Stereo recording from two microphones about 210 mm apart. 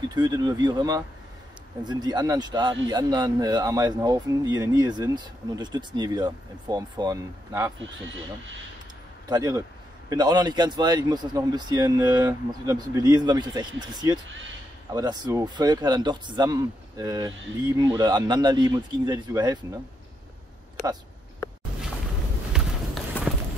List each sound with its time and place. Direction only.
0.1 s speech: 20° right (ahead or behind)
9.3 s a man's voice: 15° right (ahead or behind)
22.5 s run: 5° right (ahead or behind)
23.2 s run: 10° left (ahead or behind)